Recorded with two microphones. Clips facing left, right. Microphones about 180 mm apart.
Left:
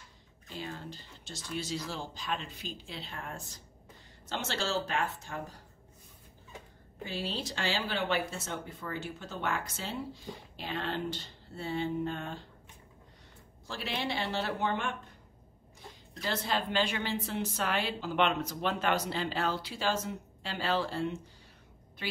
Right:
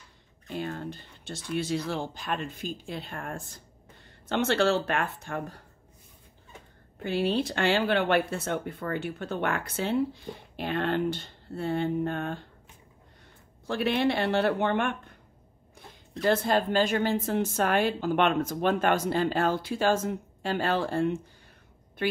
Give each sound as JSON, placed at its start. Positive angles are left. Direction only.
{"t": 0.5, "sound": "a woman's voice", "side_deg": -55}
{"t": 7.0, "sound": "speech", "side_deg": -60}
{"t": 13.7, "sound": "speech", "side_deg": -60}
{"t": 16.2, "sound": "a woman's voice", "side_deg": -50}